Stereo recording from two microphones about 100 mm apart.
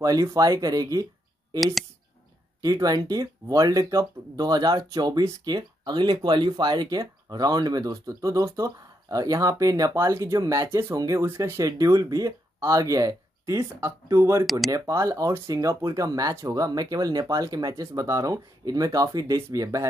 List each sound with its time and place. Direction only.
0.0 s speech: 35° right (ahead or behind)
2.6 s speech: 35° right (ahead or behind)
14.4 s speech: centre (ahead or behind)
14.7 s speech: 35° right (ahead or behind)